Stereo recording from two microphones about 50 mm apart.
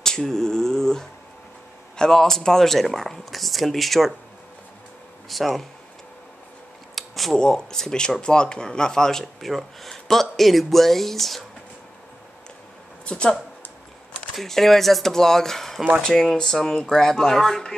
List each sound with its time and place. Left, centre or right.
0.0 s a sound: centre
2.0 s speech: centre
5.3 s speech: centre
7.0 s a sound: centre
7.3 s speech: centre
9.4 s speech: centre
13.0 s speech: centre
14.3 s speech: centre